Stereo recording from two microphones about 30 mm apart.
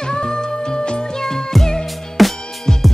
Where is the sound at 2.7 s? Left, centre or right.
Centre.